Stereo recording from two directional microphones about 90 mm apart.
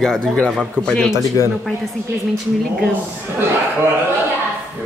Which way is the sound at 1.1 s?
35° left (ahead or behind).